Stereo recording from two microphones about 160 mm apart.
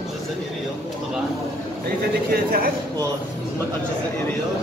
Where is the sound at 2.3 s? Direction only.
65° right (ahead or behind).